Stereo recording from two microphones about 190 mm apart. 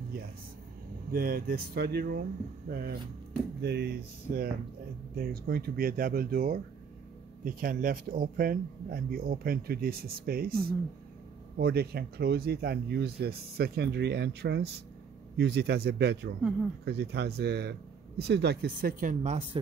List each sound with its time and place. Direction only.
1.1 s speech: 50° right (ahead or behind)
11.5 s speech: 55° right (ahead or behind)
19.6 s speech: 25° right (ahead or behind)